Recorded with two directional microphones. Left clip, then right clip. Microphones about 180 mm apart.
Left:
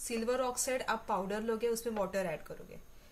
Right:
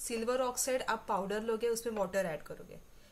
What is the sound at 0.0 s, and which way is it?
A woman's voice, 15° right (ahead or behind).